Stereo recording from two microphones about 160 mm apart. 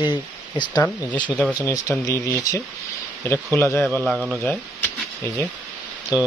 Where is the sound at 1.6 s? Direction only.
20° left (ahead or behind).